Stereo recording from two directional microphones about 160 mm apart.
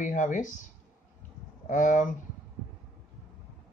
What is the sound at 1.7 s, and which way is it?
Speech, 50° left (ahead or behind).